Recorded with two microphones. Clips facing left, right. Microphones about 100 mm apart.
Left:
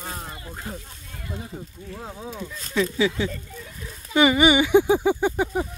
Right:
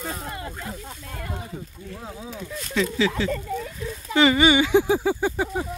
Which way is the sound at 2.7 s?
15° left (ahead or behind).